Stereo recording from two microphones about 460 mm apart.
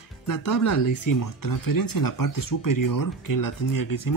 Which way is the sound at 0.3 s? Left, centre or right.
Left.